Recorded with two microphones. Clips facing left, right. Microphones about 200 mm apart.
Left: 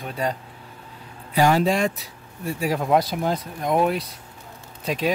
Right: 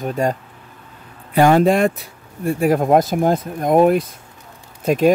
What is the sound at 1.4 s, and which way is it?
Speech, 55° right (ahead or behind).